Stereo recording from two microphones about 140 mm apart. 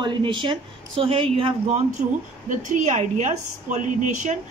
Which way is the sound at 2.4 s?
65° right (ahead or behind).